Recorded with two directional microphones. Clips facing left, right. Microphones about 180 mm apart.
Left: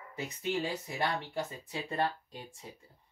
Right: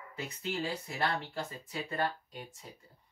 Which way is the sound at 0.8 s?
20° left (ahead or behind).